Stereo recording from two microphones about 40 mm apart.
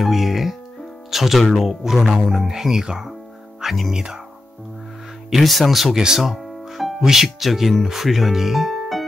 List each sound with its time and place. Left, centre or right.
0.0 s speech: centre
3.6 s speech: centre
3.9 s speech: centre
5.3 s speech: centre